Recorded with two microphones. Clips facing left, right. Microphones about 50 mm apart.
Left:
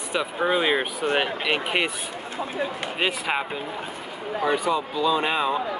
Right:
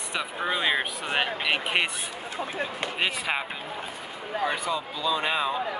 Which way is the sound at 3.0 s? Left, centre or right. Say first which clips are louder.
Left 3 dB; centre.